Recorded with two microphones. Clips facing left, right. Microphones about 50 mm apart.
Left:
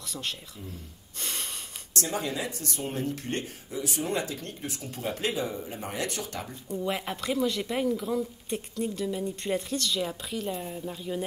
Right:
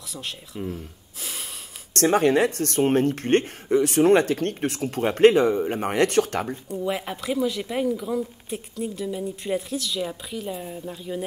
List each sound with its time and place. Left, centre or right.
1.2 s snort: centre
2.0 s speech: right
6.7 s speech: centre